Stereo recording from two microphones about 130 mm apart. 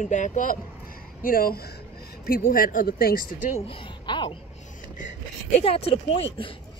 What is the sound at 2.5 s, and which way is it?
Speech, 90° left.